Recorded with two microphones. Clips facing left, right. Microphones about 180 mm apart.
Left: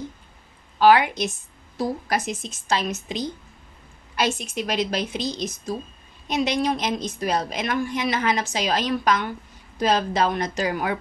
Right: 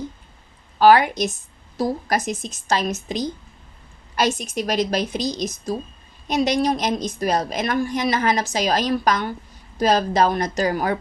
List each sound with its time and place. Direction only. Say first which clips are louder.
0.7 s a woman's voice: right 2 dB; 40° right (ahead or behind)